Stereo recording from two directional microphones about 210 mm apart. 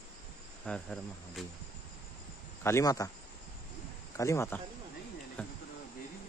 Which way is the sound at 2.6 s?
15° left (ahead or behind).